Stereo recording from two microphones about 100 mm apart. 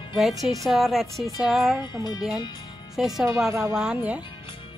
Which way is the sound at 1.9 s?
45° left (ahead or behind).